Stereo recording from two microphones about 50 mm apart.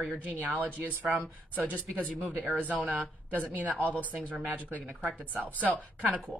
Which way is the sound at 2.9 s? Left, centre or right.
Right.